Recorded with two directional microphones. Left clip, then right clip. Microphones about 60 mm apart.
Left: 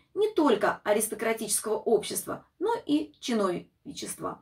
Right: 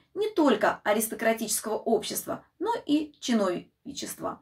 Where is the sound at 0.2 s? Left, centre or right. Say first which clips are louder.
Even; right.